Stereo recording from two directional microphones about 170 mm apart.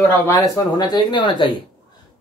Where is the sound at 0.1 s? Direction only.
20° left (ahead or behind).